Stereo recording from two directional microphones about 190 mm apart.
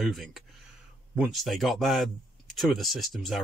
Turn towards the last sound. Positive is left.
turn(degrees=0)  # may be behind; listen again after turning